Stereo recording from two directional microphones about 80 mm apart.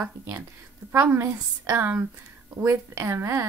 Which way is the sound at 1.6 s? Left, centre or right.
Right.